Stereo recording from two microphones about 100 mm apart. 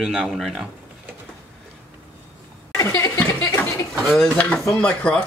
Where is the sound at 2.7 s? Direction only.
30° left (ahead or behind).